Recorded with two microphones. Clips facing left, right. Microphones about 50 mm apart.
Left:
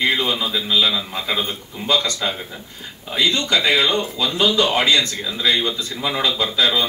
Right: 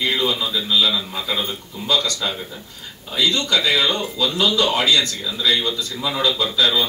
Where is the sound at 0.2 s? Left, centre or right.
Left.